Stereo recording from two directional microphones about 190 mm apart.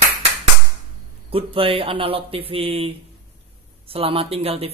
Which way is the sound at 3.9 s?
30° right (ahead or behind).